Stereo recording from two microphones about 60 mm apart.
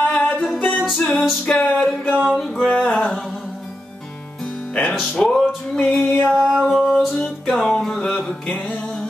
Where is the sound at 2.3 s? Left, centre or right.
Centre.